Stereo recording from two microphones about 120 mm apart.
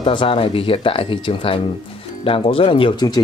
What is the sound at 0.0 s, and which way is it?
Speech, 45° left (ahead or behind).